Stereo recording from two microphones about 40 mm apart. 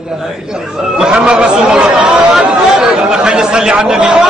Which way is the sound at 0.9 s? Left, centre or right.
Right.